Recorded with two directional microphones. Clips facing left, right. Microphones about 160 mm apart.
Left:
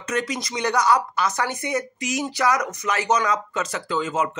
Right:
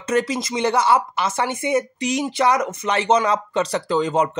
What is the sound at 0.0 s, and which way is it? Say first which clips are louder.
Speech: right 5 dB; 30° right (ahead or behind).